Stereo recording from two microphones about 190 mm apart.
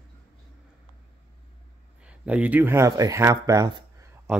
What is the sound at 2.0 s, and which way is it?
Speech, 5° right (ahead or behind).